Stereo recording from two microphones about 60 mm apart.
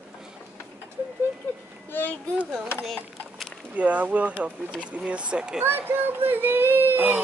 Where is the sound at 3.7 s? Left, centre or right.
Right.